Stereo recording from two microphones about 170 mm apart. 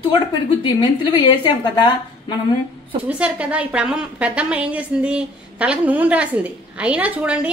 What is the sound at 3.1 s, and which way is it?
A woman's voice, 5° right (ahead or behind).